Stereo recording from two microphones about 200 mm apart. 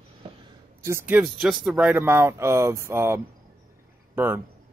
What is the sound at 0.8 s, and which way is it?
Speech, 10° right (ahead or behind).